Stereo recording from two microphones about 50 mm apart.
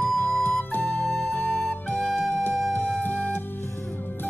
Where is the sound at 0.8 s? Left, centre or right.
Left.